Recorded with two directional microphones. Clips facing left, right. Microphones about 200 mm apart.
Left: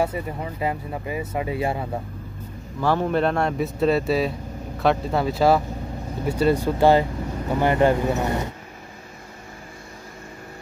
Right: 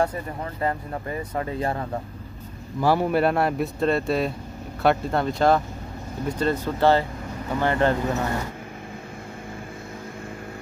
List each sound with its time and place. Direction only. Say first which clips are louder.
0.0 s speech: left 1 dB; 10° left (ahead or behind)
2.8 s speech: right 1 dB; 10° right (ahead or behind); by 8.3 s 15° left (ahead or behind)